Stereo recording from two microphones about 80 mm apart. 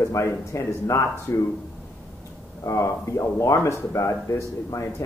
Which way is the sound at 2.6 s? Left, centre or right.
Left.